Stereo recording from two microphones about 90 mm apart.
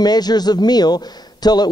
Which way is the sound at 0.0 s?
50° left (ahead or behind).